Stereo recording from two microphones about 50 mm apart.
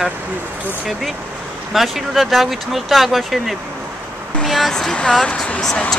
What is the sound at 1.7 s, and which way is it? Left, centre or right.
Speech, centre.